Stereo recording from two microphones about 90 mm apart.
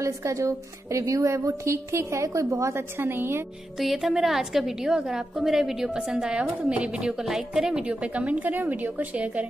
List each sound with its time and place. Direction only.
0.0 s a woman's voice: 35° right (ahead or behind)
3.8 s a woman's voice: 5° right (ahead or behind)